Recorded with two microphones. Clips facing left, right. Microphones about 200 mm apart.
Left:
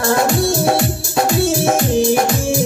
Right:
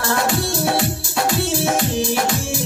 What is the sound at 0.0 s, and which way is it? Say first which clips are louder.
Music: left 5 dB; 45° left (ahead or behind).